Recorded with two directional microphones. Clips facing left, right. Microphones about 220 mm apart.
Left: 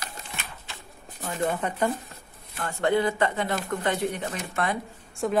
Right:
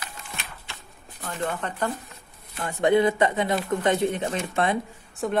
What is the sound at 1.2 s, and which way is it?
Speech, 10° left (ahead or behind).